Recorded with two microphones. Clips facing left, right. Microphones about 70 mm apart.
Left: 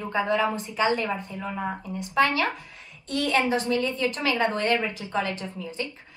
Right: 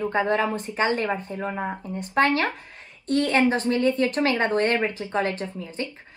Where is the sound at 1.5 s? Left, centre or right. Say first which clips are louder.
Right 1 dB; right.